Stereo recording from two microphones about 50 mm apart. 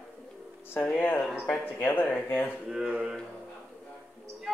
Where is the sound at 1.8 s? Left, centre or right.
Left.